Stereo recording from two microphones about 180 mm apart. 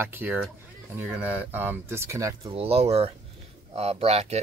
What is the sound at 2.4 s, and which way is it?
Speech, 35° right (ahead or behind).